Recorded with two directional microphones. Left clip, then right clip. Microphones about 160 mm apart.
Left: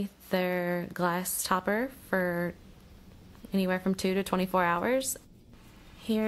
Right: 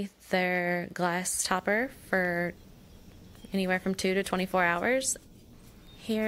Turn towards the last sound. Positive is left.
turn(degrees=-20)  # may be behind; listen again after turning